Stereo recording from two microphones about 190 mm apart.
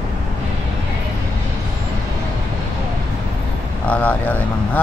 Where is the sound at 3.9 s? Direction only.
10° left (ahead or behind).